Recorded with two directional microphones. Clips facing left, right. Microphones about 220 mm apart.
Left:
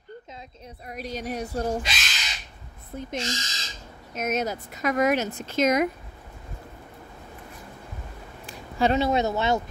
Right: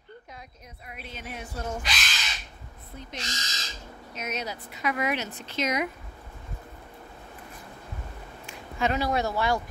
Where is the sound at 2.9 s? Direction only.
45° left (ahead or behind).